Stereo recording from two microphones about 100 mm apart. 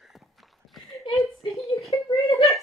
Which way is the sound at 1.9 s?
50° left (ahead or behind).